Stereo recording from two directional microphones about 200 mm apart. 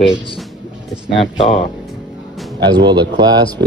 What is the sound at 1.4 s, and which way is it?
Speech, 25° left (ahead or behind).